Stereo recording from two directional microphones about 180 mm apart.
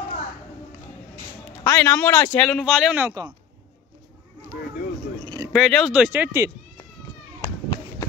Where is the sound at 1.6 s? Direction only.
10° left (ahead or behind); by 3.2 s 5° right (ahead or behind).